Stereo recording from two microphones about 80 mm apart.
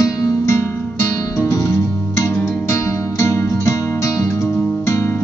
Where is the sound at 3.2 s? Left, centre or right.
Left.